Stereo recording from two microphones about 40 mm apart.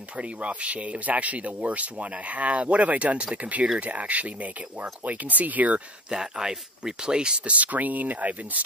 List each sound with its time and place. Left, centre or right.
0.2 s speech: right
6.0 s speech: centre
7.4 s speech: right